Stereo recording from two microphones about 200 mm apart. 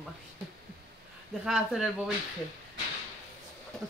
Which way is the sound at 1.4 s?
5° right (ahead or behind).